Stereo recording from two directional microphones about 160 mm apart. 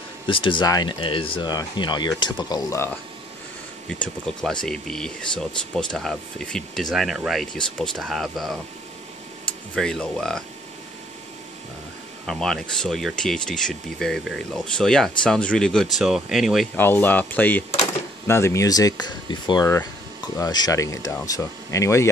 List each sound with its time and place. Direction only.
0.3 s speech: 30° left (ahead or behind)
3.9 s speech: 5° left (ahead or behind)
9.8 s speech: 5° left (ahead or behind)
12.3 s speech: 5° left (ahead or behind)
16.7 s speech: 10° left (ahead or behind)